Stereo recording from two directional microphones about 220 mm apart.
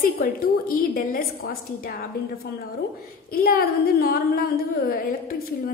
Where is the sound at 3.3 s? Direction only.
45° left (ahead or behind).